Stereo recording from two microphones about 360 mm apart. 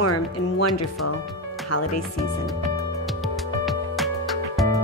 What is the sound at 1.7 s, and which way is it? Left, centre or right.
Speech, left.